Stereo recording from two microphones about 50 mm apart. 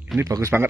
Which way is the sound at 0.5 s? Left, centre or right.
Right.